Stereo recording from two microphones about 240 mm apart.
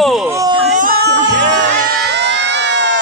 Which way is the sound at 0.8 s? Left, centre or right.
Right.